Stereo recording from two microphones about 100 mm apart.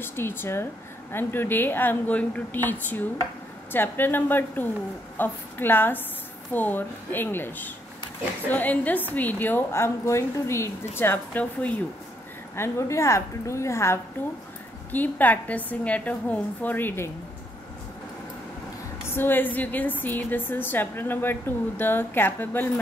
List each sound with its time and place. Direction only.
0.0 s a woman's voice: 25° left (ahead or behind)
14.9 s a woman's voice: 15° left (ahead or behind)
19.0 s a woman's voice: 20° left (ahead or behind)